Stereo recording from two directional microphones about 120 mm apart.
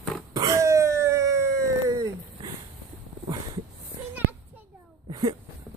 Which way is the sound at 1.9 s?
30° right (ahead or behind).